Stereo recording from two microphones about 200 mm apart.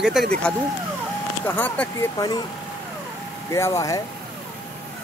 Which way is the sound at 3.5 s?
15° left (ahead or behind).